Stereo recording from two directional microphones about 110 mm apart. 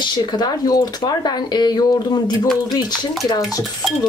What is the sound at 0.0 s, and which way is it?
Speech, 40° left (ahead or behind).